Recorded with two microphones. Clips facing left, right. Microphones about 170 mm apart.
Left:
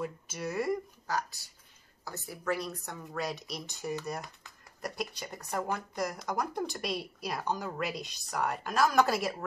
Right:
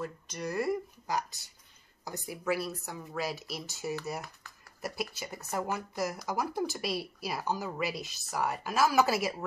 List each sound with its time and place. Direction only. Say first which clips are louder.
0.0 s speech: left 1 dB; 5° left (ahead or behind)
1.0 s speech: right 1 dB; 15° right (ahead or behind)